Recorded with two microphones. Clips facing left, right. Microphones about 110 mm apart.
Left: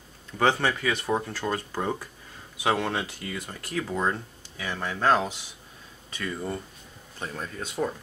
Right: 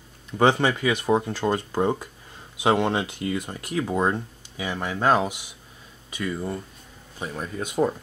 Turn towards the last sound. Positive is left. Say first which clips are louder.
# right 6 dB
turn(degrees=-15)  # may be behind; listen again after turning